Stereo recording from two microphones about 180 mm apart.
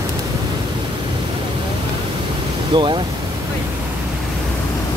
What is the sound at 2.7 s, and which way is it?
Speech, 25° right (ahead or behind).